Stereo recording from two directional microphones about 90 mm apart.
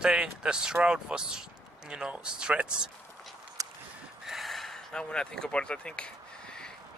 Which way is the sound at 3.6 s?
40° right (ahead or behind).